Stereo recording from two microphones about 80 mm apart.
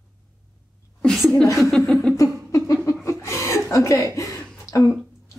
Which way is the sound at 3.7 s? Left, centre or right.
Left.